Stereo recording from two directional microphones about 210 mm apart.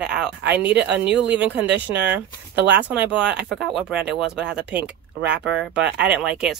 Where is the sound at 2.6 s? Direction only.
55° right (ahead or behind).